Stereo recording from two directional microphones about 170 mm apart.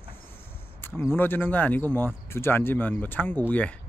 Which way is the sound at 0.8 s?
15° left (ahead or behind).